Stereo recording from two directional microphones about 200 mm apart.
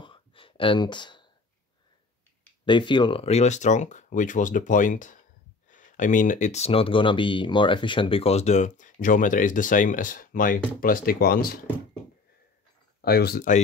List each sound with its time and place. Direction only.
0.0 s a sound: 25° left (ahead or behind)
2.6 s speech: 25° left (ahead or behind); by 11.6 s 45° left (ahead or behind)
13.0 s speech: 50° left (ahead or behind)